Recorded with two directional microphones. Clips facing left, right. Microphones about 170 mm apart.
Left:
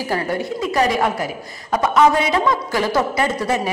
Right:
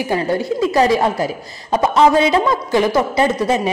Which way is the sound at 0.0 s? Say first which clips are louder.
Right 4 dB; 20° right (ahead or behind).